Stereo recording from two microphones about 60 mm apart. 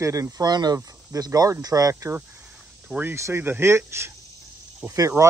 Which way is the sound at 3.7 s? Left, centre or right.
Right.